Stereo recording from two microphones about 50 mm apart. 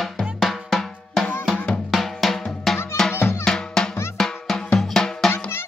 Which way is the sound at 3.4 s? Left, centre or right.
Centre.